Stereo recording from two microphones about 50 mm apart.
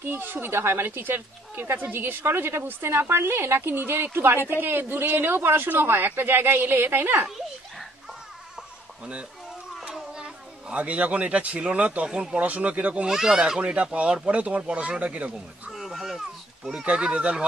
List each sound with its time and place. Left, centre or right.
0.0 s a woman's voice: right
9.9 s children playing: centre
10.7 s speech: right
12.1 s speech: centre
12.4 s speech: right
13.0 s speech: centre
13.6 s speech: right
15.7 s cat: centre
16.8 s speech: right